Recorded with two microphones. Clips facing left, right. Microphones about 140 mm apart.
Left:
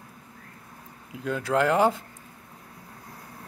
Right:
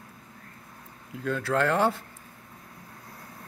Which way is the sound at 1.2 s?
15° left (ahead or behind).